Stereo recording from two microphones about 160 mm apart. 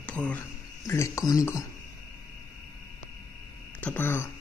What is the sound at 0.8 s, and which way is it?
Speech, 20° left (ahead or behind).